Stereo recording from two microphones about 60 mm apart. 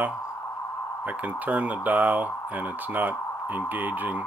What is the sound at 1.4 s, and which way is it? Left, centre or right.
Speech, right.